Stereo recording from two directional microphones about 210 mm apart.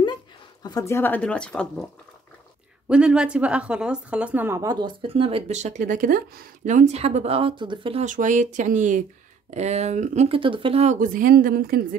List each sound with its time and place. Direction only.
0.0 s speech: 20° left (ahead or behind); by 1.9 s 5° left (ahead or behind)
2.9 s a woman's voice: 5° right (ahead or behind); by 12.0 s 45° right (ahead or behind)